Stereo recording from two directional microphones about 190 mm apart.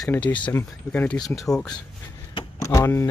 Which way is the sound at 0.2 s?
25° left (ahead or behind).